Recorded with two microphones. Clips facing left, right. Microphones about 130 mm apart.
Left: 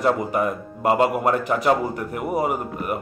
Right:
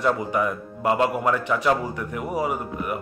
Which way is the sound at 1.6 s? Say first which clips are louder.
Left 3 dB; 45° left (ahead or behind).